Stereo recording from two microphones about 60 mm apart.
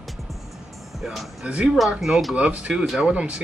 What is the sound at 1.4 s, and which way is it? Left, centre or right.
Speech, centre.